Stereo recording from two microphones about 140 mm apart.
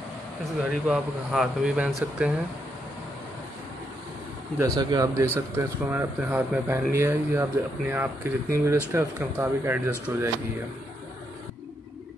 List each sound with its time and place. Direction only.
0.7 s speech: centre (ahead or behind)
4.6 s speech: 25° right (ahead or behind)
5.1 s speech: 15° right (ahead or behind)